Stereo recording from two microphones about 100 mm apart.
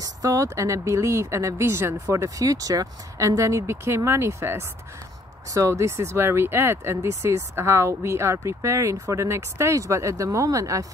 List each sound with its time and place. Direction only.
0.0 s speech: 35° right (ahead or behind)